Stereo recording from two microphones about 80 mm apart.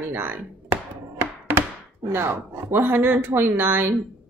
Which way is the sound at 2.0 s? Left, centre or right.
Right.